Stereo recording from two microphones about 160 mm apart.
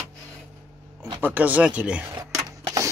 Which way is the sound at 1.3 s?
10° right (ahead or behind).